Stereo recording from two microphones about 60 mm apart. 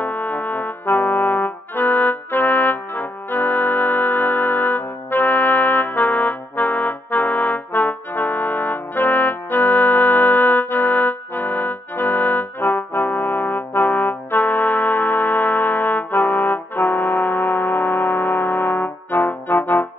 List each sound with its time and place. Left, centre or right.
0.0 s brass instrument: left